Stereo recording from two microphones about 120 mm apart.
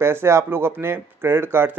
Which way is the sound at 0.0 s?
20° right (ahead or behind).